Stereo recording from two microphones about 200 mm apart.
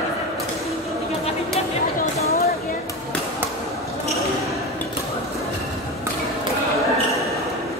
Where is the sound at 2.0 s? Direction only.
50° left (ahead or behind).